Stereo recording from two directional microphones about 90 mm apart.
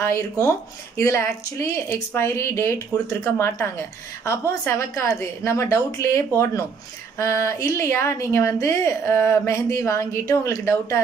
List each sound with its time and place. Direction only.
0.0 s a woman's voice: 35° left (ahead or behind)